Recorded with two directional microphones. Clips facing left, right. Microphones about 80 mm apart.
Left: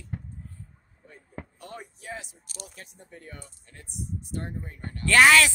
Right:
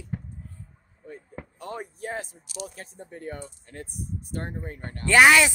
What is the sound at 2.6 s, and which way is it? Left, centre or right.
Speech, right.